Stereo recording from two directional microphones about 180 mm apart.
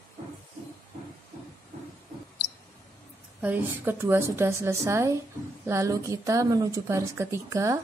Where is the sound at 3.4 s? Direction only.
10° right (ahead or behind).